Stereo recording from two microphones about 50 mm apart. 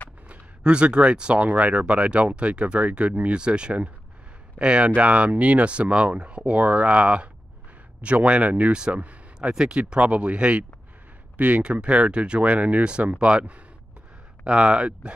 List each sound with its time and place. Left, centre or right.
0.3 s speech: right
1.5 s speech: right
8.9 s a sound: right
9.6 s speech: centre
11.3 s speech: right
11.6 s speech: right